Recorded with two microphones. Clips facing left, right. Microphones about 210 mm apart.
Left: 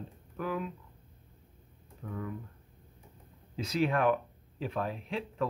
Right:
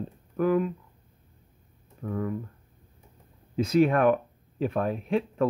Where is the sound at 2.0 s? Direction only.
50° right (ahead or behind).